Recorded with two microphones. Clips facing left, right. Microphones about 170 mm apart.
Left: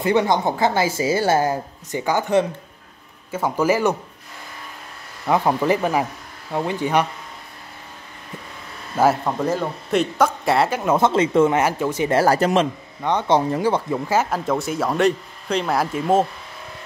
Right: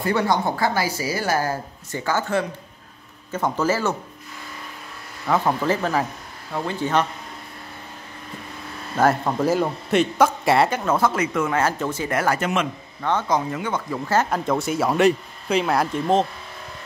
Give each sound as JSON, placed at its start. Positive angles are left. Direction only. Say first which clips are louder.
{"t": 0.0, "sound": "a woman's voice", "louder": "left 3 dB", "side_deg": 20}
{"t": 5.2, "sound": "speech", "louder": "left 2 dB", "side_deg": 15}
{"t": 8.9, "sound": "speech", "louder": "left 1 dB", "side_deg": 5}
{"t": 10.8, "sound": "a woman's voice", "louder": "left 3 dB", "side_deg": 20}
{"t": 11.6, "sound": "speech", "louder": "left 3 dB", "side_deg": 15}
{"t": 12.1, "sound": "speech", "louder": "left 6 dB", "side_deg": 35}
{"t": 13.8, "sound": "speech", "louder": "left 1 dB", "side_deg": 15}